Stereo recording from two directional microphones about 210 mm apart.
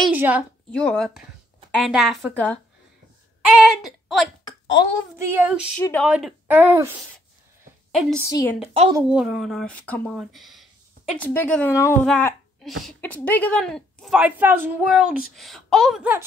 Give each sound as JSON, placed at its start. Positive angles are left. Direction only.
{"t": 0.0, "sound": "a woman's voice", "side_deg": -10}
{"t": 0.7, "sound": "speech", "side_deg": 5}
{"t": 3.5, "sound": "a sound", "side_deg": 0}
{"t": 5.1, "sound": "speech", "side_deg": -5}
{"t": 5.8, "sound": "speech", "side_deg": 5}
{"t": 6.0, "sound": "speech", "side_deg": -5}
{"t": 7.9, "sound": "a woman's voice", "side_deg": 0}
{"t": 8.3, "sound": "speech", "side_deg": 15}
{"t": 8.9, "sound": "speech", "side_deg": -5}